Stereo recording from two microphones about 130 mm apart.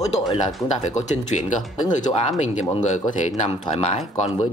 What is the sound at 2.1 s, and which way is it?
Speech, 60° left (ahead or behind).